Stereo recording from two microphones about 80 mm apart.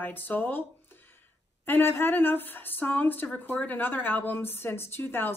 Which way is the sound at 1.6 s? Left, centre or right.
Left.